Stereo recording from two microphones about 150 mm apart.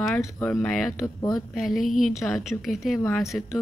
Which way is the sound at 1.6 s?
Centre (ahead or behind).